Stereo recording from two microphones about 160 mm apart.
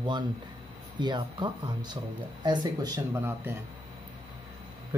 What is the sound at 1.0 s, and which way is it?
Speech, 30° right (ahead or behind).